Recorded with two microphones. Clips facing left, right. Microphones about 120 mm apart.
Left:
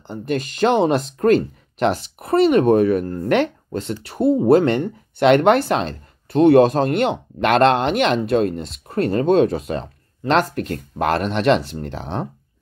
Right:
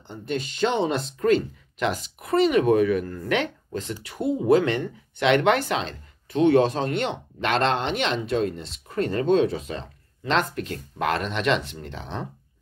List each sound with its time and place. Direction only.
0.1 s speech: 60° left (ahead or behind)
0.9 s speech: 45° left (ahead or behind)